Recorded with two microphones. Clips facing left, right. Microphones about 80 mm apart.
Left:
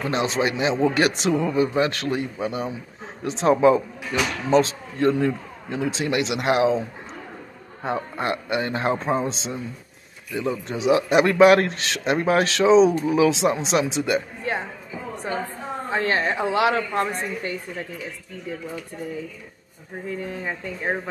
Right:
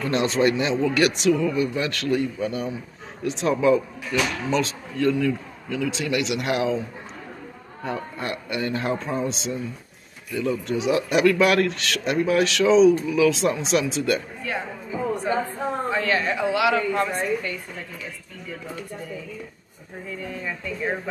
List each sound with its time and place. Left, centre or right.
0.0 s speech: left
0.7 s speech: left
7.8 s a man's voice: left
13.3 s speech: left
15.9 s a man's voice: left
20.1 s a man's voice: left